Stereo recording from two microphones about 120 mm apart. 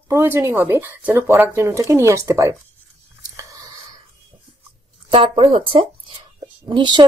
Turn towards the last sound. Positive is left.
turn(degrees=-40)  # may be behind; listen again after turning